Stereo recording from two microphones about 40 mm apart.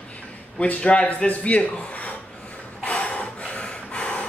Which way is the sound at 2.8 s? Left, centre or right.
Left.